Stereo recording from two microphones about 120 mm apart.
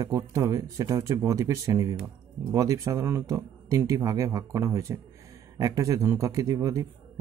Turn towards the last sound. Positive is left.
turn(degrees=-25)  # may be behind; listen again after turning